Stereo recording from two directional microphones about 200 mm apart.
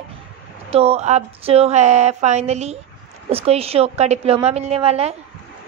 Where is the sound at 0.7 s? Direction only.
30° right (ahead or behind).